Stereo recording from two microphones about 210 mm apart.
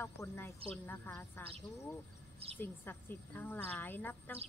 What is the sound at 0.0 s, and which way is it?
A woman's voice, 10° left (ahead or behind).